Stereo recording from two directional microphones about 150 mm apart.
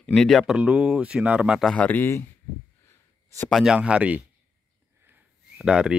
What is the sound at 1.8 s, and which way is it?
Speech, 15° left (ahead or behind).